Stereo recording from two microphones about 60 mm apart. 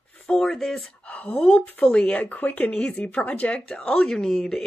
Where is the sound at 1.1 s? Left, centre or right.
Left.